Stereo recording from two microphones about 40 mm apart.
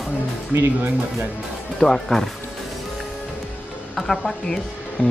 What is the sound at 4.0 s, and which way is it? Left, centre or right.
Speech, centre.